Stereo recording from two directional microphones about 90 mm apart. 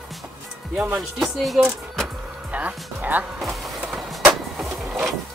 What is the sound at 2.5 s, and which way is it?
Speech, 15° right (ahead or behind).